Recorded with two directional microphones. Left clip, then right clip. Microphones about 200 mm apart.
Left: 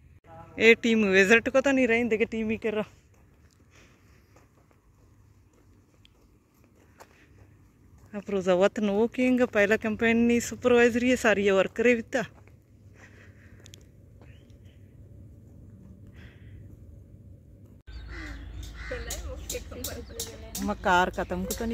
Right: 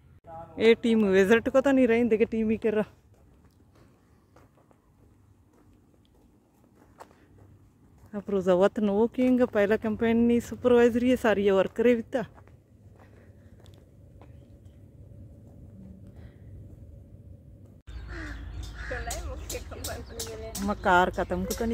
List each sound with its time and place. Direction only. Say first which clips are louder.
0.6 s speech: left 2 dB; 10° right (ahead or behind); by 2.9 s 30° right (ahead or behind)
8.1 s speech: right 1 dB; 15° right (ahead or behind)
19.0 s a sound: right 1 dB; 55° left (ahead or behind)
20.6 s speech: right 1 dB; centre (ahead or behind)